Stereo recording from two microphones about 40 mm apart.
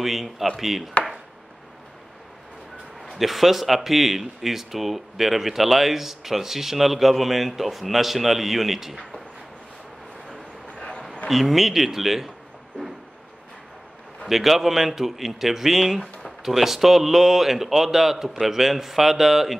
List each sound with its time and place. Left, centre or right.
0.0 s speech: centre
3.2 s speech: centre
10.7 s a sound: left
11.2 s speech: centre
14.2 s a man's voice: centre